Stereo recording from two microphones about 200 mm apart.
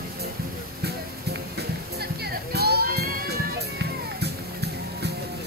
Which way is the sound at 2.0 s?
50° right (ahead or behind).